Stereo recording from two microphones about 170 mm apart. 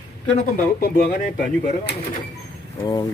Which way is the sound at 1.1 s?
50° left (ahead or behind).